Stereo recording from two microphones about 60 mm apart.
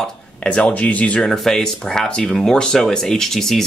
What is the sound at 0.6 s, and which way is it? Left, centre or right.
Speech, left.